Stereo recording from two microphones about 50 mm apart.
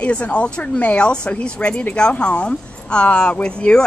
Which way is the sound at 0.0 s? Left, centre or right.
Left.